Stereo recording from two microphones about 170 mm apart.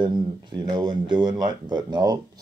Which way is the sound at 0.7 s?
25° right (ahead or behind).